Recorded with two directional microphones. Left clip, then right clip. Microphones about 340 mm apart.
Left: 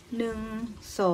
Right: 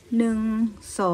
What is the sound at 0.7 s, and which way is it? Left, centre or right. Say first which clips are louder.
Speech: left 2 dB; centre.